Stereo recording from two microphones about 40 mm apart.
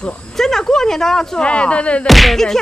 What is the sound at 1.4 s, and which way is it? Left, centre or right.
Speech, left.